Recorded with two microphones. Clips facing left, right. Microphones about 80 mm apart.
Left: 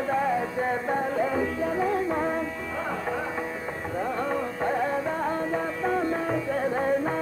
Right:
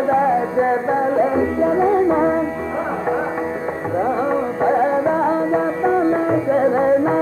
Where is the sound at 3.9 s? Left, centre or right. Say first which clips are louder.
Right 9 dB; right.